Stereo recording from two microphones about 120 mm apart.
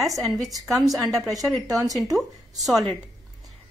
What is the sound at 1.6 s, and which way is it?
Speech, 30° right (ahead or behind).